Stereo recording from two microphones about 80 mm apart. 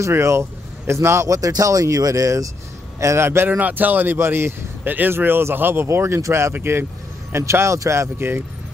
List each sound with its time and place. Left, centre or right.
0.0 s a man's voice: right
3.5 s a man's voice: right